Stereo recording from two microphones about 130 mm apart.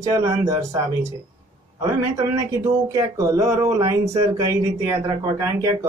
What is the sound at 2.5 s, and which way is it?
Speech, 25° right (ahead or behind).